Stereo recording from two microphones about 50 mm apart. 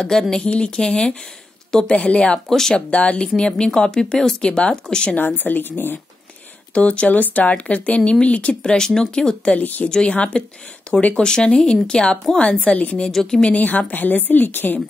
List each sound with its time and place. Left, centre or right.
0.0 s a woman's voice: centre
2.9 s speech: left
5.1 s a woman's voice: left
6.7 s speech: left
8.7 s speech: centre
9.6 s a woman's voice: left
10.0 s speech: left
13.1 s speech: centre
13.4 s a woman's voice: left